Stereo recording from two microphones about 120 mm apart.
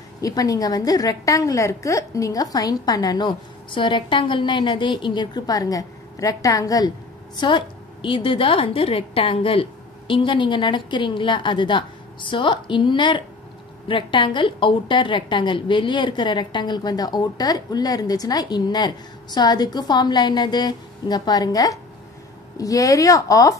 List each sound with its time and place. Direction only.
0.2 s a woman's voice: 30° left (ahead or behind)
7.3 s a woman's voice: 45° left (ahead or behind); by 23.5 s 30° left (ahead or behind)